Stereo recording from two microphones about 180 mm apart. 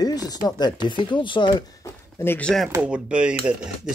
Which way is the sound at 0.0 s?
20° left (ahead or behind).